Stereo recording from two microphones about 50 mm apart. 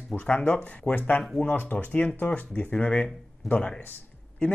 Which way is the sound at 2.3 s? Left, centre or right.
Left.